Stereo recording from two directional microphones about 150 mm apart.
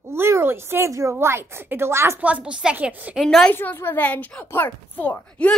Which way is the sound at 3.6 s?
15° left (ahead or behind).